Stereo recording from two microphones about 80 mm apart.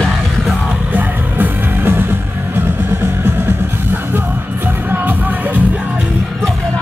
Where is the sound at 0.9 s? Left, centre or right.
Right.